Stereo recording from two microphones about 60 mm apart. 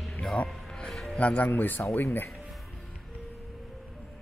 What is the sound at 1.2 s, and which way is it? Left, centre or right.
Speech, left.